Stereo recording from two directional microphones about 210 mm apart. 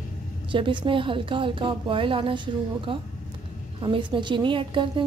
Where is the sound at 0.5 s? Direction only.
25° right (ahead or behind).